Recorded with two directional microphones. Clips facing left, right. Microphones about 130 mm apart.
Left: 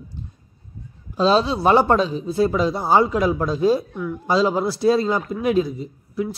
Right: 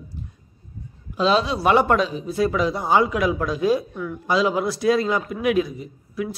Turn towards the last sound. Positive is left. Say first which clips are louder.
# left 3 dB
turn(degrees=30)  # may be behind; listen again after turning